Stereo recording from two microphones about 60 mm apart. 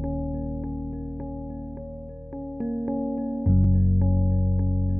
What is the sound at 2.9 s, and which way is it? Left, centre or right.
Music, centre.